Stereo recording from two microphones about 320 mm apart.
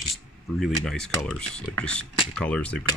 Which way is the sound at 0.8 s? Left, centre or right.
Centre.